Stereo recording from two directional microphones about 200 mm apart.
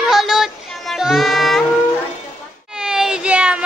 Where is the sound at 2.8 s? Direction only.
5° right (ahead or behind).